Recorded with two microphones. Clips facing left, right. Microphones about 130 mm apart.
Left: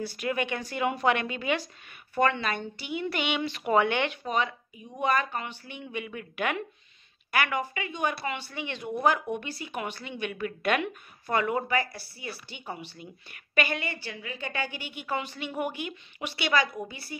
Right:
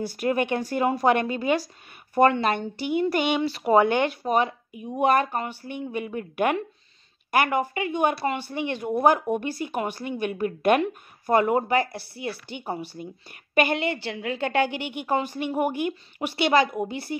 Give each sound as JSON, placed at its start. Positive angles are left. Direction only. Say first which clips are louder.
{"t": 0.1, "sound": "speech", "louder": "right 6 dB", "side_deg": -45}
{"t": 5.7, "sound": "speech", "louder": "right 6 dB", "side_deg": -45}
{"t": 12.6, "sound": "speech", "louder": "right 7 dB", "side_deg": -40}
{"t": 14.0, "sound": "a woman's voice", "louder": "right 9 dB", "side_deg": -70}
{"t": 15.1, "sound": "speech", "louder": "right 7 dB", "side_deg": -45}